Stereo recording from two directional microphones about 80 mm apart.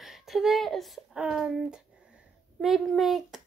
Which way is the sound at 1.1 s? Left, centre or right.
Centre.